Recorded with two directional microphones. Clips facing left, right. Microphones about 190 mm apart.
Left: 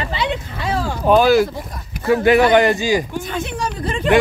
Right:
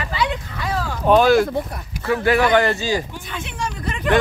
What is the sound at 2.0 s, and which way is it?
A man's voice, 20° left (ahead or behind).